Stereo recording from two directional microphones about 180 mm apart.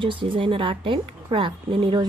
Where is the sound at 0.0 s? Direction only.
30° right (ahead or behind).